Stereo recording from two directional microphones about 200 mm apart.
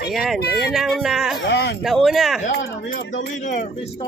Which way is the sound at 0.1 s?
Centre (ahead or behind).